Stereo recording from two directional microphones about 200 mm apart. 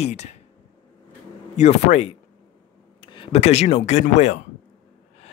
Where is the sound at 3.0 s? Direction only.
25° left (ahead or behind).